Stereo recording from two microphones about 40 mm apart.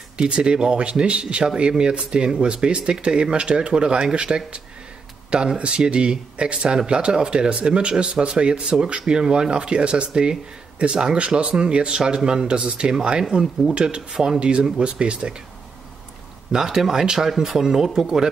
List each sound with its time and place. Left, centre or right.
0.2 s speech: right
5.6 s speech: right
13.3 s speech: centre
14.4 s speech: right
16.5 s speech: centre